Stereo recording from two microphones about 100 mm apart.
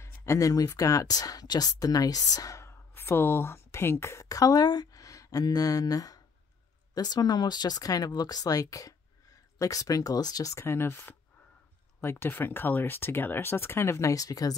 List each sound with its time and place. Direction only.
0.0 s speech: 30° left (ahead or behind)